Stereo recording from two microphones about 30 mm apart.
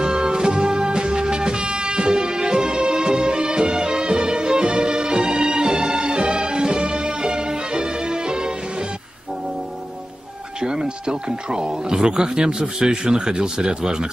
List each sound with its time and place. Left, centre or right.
0.0 s music: right
10.6 s speech: right